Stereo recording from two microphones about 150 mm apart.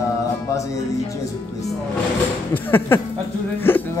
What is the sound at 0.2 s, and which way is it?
Music, 20° left (ahead or behind).